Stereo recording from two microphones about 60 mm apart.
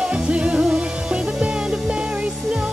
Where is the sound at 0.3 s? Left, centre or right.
Centre.